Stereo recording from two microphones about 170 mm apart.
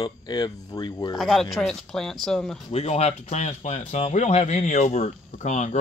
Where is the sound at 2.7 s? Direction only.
40° left (ahead or behind).